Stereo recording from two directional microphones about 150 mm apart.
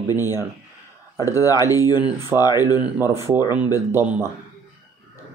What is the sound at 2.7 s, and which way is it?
Speech, 15° right (ahead or behind).